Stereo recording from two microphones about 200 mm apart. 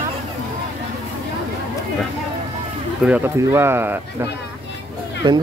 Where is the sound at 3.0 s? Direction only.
10° right (ahead or behind).